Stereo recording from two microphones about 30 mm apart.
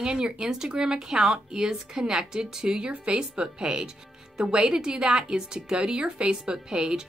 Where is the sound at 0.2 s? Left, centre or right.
Centre.